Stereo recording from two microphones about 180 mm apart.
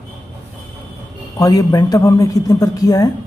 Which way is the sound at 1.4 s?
20° left (ahead or behind).